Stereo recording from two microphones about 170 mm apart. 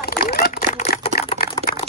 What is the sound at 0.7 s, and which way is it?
Typewriter, 35° left (ahead or behind).